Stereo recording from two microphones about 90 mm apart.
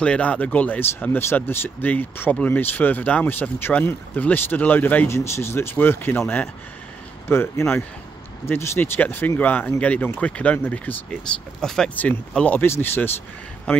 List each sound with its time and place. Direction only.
0.0 s speech: 15° left (ahead or behind)
5.0 s speech: 30° left (ahead or behind)
11.6 s speech: 5° left (ahead or behind)
11.9 s speech: 15° left (ahead or behind)
12.6 s speech: 25° left (ahead or behind)